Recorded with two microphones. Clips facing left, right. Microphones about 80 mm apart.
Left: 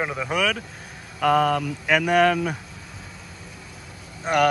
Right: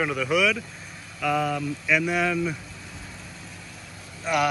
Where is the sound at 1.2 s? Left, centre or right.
Left.